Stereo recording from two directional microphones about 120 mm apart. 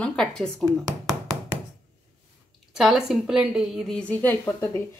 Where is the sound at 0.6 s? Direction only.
30° right (ahead or behind).